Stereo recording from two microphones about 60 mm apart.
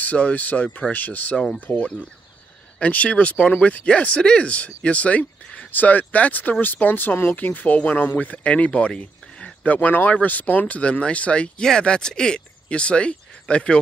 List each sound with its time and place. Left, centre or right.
0.0 s speech: left
1.4 s speech: centre